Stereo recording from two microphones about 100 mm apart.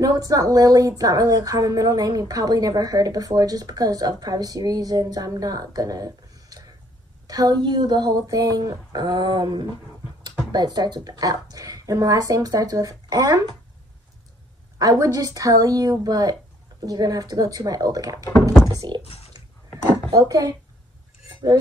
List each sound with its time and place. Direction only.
0.0 s a woman's voice: 35° right (ahead or behind)
14.8 s a woman's voice: 35° right (ahead or behind)
19.0 s a sound: 90° left
20.1 s a woman's voice: 35° right (ahead or behind)